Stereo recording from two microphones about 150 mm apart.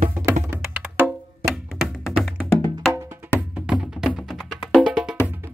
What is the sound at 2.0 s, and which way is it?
Music, centre (ahead or behind).